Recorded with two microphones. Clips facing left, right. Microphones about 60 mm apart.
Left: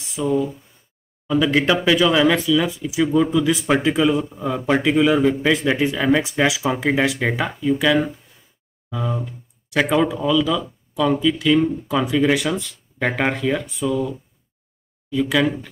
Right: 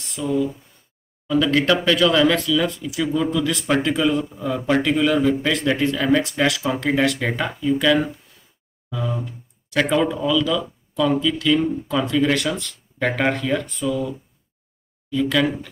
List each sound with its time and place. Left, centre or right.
0.0 s speech: centre